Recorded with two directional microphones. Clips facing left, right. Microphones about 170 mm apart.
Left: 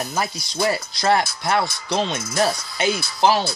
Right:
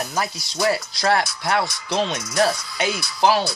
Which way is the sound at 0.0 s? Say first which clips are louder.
Even; centre (ahead or behind).